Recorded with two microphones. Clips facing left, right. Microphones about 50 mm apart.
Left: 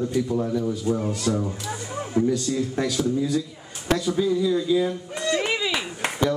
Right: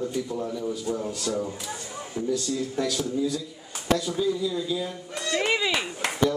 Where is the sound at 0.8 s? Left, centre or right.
Left.